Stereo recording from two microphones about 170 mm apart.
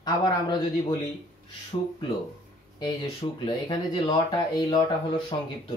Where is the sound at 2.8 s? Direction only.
25° left (ahead or behind).